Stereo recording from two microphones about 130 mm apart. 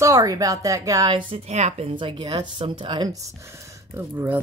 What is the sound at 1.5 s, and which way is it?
Speech, 60° right (ahead or behind).